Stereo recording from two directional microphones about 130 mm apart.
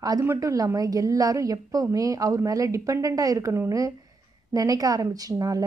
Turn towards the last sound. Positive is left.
turn(degrees=-25)  # may be behind; listen again after turning